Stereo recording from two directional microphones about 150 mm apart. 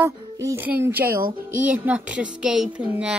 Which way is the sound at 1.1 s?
75° right (ahead or behind).